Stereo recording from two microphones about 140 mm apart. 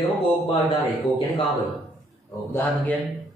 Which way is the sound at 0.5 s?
35° left (ahead or behind).